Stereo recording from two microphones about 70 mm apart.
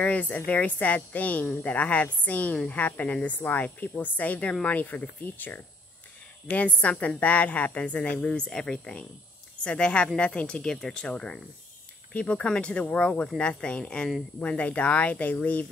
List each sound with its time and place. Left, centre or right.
0.0 s a woman's voice: left